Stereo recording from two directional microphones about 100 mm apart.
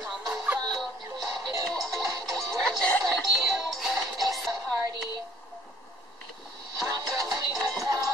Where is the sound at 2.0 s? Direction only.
40° right (ahead or behind).